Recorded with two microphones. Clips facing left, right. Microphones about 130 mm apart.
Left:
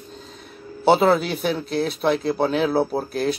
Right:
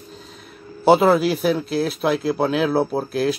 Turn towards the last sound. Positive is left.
turn(degrees=0)  # may be behind; listen again after turning